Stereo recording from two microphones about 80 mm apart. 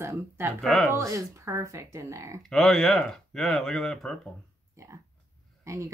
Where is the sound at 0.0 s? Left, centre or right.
Right.